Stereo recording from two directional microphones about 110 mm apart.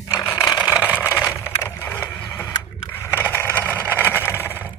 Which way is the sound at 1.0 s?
15° left (ahead or behind).